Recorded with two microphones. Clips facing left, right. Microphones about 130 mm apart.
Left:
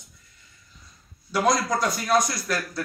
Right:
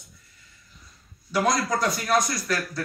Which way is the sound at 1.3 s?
Centre (ahead or behind).